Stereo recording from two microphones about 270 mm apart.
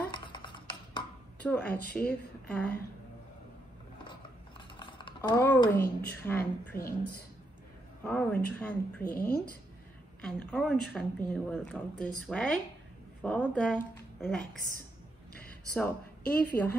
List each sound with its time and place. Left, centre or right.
0.1 s dishes: centre
1.4 s speech: centre
1.9 s speech: left
4.1 s mechanisms: centre
6.2 s a woman's voice: centre
15.7 s a woman's voice: centre